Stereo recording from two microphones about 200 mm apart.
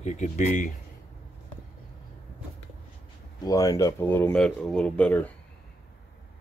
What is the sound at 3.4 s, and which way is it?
Speech, 15° left (ahead or behind).